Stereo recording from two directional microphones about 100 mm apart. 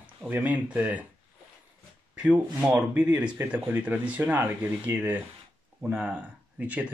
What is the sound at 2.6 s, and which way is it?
Speech, 15° right (ahead or behind).